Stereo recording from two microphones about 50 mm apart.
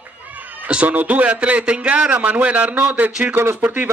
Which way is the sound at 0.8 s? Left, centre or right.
Right.